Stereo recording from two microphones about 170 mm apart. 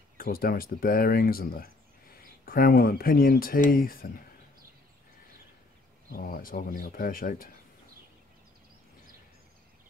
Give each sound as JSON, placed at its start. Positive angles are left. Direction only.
{"t": 0.2, "sound": "speech", "side_deg": 60}
{"t": 6.1, "sound": "speech", "side_deg": 60}